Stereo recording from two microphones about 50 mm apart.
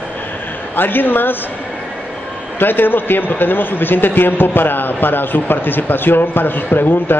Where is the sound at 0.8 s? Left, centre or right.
Left.